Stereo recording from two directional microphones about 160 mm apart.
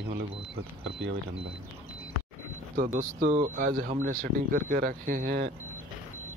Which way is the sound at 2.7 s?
55° right (ahead or behind).